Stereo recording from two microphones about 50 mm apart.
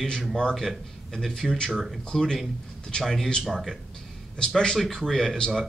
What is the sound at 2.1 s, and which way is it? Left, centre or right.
Speech, centre.